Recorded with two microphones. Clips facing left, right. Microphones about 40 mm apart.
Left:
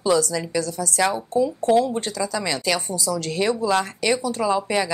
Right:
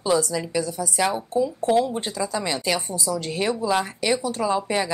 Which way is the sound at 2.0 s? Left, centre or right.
Centre.